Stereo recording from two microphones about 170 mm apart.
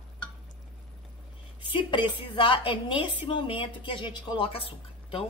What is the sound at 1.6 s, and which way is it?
A woman's voice, 30° left (ahead or behind).